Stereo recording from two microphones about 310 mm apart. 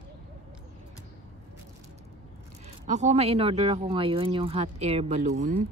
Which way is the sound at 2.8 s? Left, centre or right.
Right.